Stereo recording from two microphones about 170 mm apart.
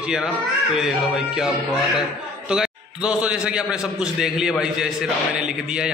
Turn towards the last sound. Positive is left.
turn(degrees=-5)  # may be behind; listen again after turning